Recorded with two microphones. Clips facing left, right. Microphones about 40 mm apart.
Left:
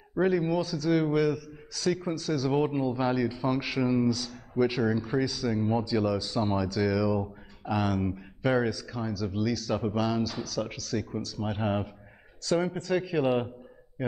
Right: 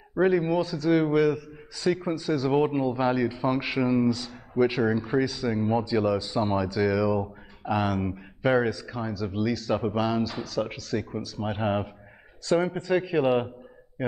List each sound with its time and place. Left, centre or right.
0.1 s a man's voice: centre